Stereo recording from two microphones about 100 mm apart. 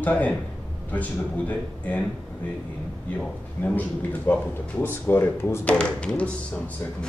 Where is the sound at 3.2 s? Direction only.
15° left (ahead or behind).